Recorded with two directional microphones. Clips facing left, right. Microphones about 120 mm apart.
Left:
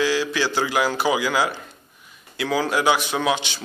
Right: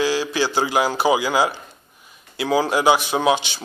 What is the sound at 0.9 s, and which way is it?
A man's voice, 25° right (ahead or behind).